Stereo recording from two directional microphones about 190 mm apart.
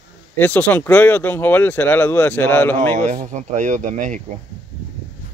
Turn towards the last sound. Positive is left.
turn(degrees=-40)  # may be behind; listen again after turning